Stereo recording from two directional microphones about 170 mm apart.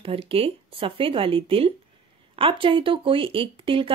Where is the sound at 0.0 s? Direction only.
35° right (ahead or behind).